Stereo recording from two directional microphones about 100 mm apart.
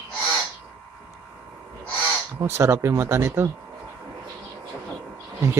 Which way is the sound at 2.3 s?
25° right (ahead or behind).